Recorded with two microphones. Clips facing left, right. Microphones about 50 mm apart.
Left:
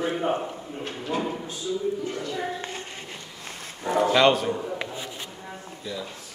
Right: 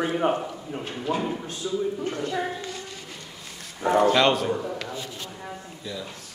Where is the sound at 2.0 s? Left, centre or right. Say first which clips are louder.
Right 2 dB; right.